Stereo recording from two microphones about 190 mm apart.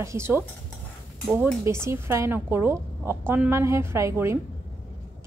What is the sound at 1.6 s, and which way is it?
Speech, 15° right (ahead or behind).